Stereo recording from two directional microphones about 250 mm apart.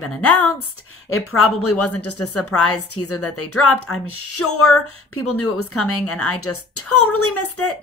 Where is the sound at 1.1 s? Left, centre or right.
Left.